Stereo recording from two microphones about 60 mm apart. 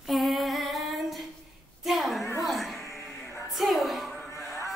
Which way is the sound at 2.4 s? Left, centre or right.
Centre.